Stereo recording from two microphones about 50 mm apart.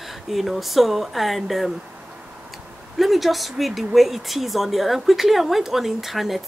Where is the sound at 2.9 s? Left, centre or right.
Centre.